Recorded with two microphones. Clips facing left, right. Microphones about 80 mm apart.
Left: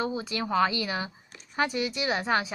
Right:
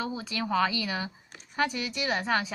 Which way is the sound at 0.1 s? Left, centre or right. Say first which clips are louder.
Left 1 dB; centre.